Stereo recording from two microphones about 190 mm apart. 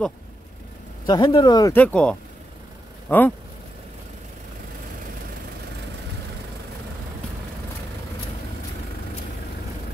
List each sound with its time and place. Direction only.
1.0 s speech: 20° left (ahead or behind)
1.8 s speech: 5° left (ahead or behind)